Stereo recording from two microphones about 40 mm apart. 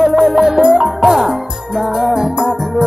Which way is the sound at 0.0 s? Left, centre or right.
Centre.